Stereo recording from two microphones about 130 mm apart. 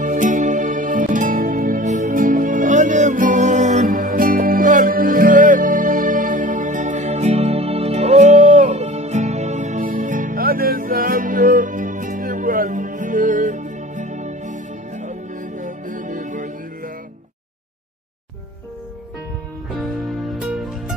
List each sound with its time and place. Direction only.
0.0 s music: 75° right (ahead or behind)
19.8 s music: centre (ahead or behind)